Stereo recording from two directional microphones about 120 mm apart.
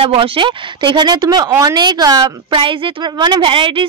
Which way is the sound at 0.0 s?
50° right (ahead or behind).